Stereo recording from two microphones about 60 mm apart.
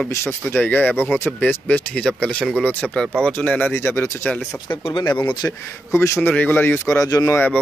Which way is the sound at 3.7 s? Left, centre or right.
Left.